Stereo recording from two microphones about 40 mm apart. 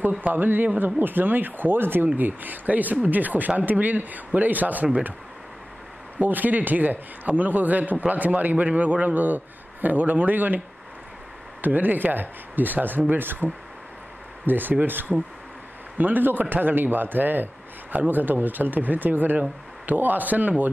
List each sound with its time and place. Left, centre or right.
0.3 s speech: right
2.1 s a man's voice: right
6.1 s a man's voice: right
11.6 s a man's voice: right